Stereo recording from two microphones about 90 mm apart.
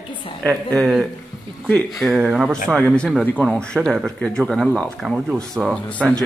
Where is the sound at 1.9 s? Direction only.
5° left (ahead or behind).